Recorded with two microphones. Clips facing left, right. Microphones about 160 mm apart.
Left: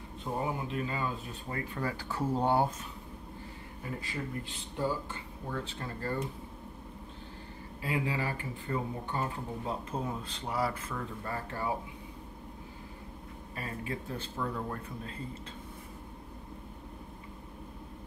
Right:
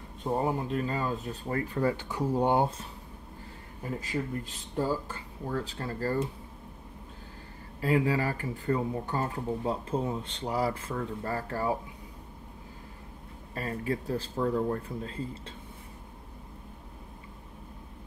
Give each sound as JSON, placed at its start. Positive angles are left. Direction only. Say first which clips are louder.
{"t": 0.3, "sound": "speech", "louder": "right 6 dB", "side_deg": -30}
{"t": 0.7, "sound": "speech", "louder": "right 4 dB", "side_deg": -40}
{"t": 4.0, "sound": "speech", "louder": "right 6 dB", "side_deg": -40}
{"t": 7.8, "sound": "speech", "louder": "right 7 dB", "side_deg": -40}
{"t": 9.7, "sound": "speech", "louder": "right 4 dB", "side_deg": -30}
{"t": 13.6, "sound": "speech", "louder": "right 6 dB", "side_deg": -40}